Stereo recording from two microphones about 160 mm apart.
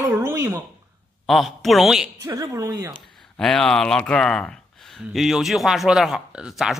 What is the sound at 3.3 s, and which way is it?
Speech, 5° left (ahead or behind).